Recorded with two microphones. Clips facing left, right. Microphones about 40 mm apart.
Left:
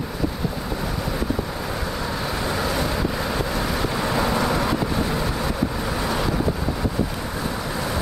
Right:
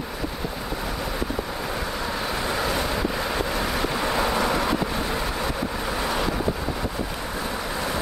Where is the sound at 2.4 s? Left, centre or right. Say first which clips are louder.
Left 2 dB; right.